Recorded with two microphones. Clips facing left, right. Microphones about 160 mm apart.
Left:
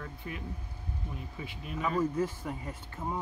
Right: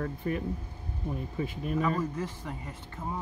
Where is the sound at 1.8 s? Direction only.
5° left (ahead or behind).